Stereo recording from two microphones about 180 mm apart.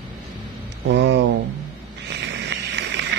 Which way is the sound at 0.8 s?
75° right (ahead or behind).